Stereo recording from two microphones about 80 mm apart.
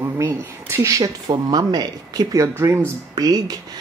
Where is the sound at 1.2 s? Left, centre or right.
Right.